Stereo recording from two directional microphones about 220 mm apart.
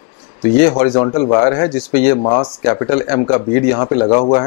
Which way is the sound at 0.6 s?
20° left (ahead or behind).